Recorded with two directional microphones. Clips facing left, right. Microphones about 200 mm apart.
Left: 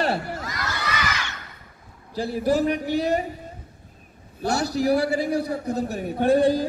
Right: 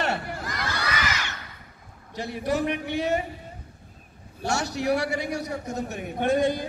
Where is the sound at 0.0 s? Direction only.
35° left (ahead or behind).